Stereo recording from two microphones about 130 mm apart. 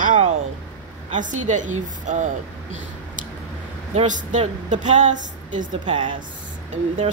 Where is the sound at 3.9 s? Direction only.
70° right (ahead or behind).